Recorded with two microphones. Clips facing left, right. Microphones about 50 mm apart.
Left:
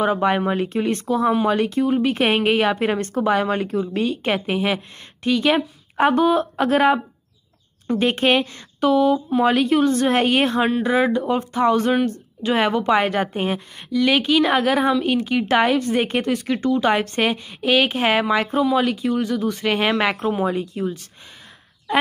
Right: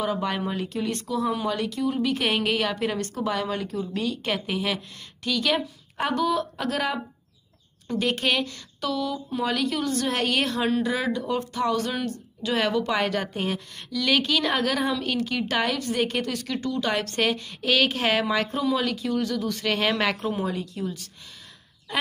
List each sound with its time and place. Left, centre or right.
0.0 s speech: left